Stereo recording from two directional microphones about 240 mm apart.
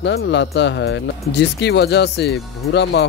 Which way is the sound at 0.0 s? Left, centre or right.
Left.